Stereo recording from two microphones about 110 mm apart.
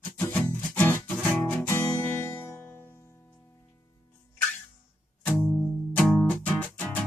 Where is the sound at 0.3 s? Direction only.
15° left (ahead or behind).